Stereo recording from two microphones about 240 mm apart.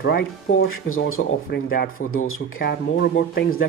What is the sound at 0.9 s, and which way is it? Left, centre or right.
Speech, left.